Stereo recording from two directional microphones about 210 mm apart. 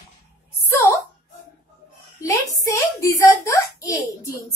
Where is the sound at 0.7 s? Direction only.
15° left (ahead or behind).